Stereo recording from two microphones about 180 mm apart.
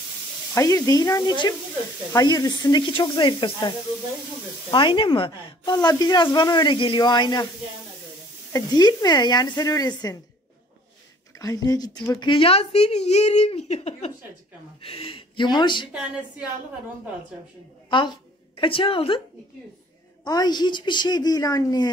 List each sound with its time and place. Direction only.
0.6 s a woman's voice: 20° left (ahead or behind)
8.5 s a woman's voice: 20° left (ahead or behind)
11.3 s a woman's voice: 20° left (ahead or behind)
15.9 s a sound: 5° right (ahead or behind)
17.8 s a woman's voice: 25° left (ahead or behind)
20.2 s a woman's voice: 20° left (ahead or behind)